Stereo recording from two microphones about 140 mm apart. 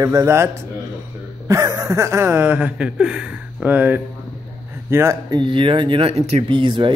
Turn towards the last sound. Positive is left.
turn(degrees=-35)  # may be behind; listen again after turning